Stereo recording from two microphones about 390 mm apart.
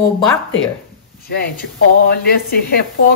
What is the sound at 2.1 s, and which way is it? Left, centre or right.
Speech, left.